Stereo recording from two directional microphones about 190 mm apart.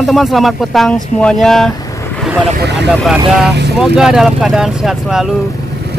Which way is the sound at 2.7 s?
Centre (ahead or behind).